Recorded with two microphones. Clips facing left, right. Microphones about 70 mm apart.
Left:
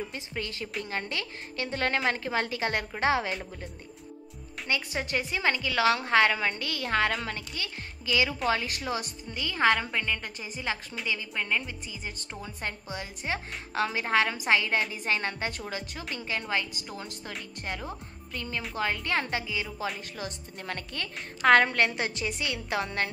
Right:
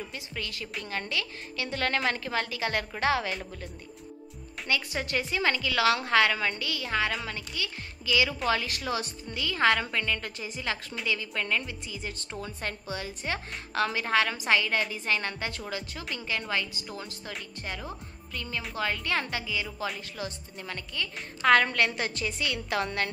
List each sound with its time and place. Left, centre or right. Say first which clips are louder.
0.1 s a woman's voice: left 2 dB; left
3.3 s speech: even; centre
4.6 s a woman's voice: even; left
6.6 s a woman's voice: left 2 dB; left; by 12.5 s centre
12.5 s a woman's voice: left 1 dB; left
18.3 s a woman's voice: left 1 dB; left
20.5 s a woman's voice: left 1 dB; left
21.4 s a woman's voice: left 1 dB; left